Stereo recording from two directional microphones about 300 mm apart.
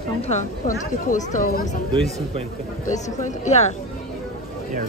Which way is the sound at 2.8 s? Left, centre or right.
Left.